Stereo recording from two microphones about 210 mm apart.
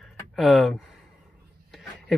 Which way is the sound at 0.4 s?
Centre (ahead or behind).